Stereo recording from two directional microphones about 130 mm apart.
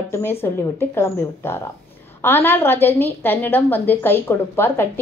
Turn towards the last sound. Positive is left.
turn(degrees=15)  # may be behind; listen again after turning